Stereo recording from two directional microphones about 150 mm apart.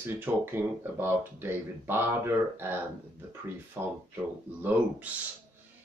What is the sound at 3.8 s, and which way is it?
Speech, 15° right (ahead or behind).